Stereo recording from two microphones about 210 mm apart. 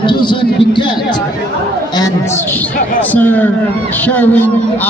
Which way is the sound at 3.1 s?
10° left (ahead or behind).